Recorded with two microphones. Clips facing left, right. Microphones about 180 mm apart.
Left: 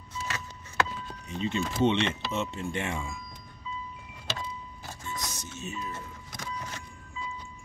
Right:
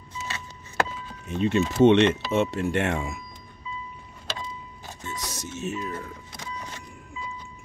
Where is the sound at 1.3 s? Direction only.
70° right (ahead or behind).